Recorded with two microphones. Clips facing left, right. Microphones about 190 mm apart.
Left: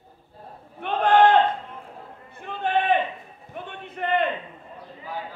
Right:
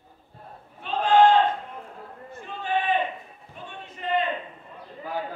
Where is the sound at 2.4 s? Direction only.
60° left (ahead or behind).